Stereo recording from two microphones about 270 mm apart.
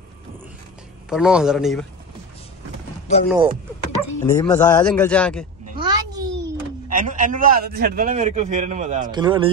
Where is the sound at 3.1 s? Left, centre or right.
Left.